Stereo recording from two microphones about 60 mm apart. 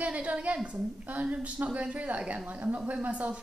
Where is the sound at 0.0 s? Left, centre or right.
Right.